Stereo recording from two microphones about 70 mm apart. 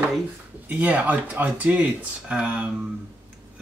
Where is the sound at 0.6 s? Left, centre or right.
Centre.